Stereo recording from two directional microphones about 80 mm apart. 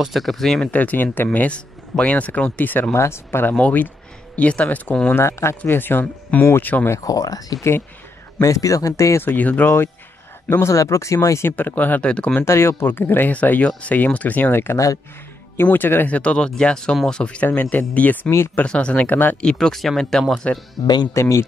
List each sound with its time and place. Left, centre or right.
0.0 s speech: centre
0.7 s speech: left
5.1 s speech: left
7.0 s speech: left
9.2 s speech: left
10.5 s speech: left
11.5 s speech: left
12.4 s speech: left
16.2 s speech: centre
18.3 s speech: left
18.6 s speech: centre
19.4 s speech: centre
20.8 s speech: left
21.1 s speech: left